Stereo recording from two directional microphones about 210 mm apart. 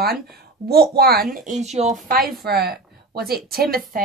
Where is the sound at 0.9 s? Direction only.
45° right (ahead or behind).